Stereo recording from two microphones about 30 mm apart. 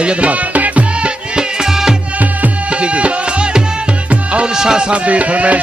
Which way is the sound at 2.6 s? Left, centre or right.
Right.